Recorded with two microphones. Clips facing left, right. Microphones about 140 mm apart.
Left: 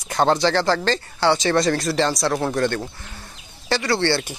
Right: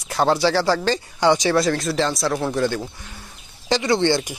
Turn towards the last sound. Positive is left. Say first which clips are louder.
# right 2 dB
turn(degrees=-15)  # may be behind; listen again after turning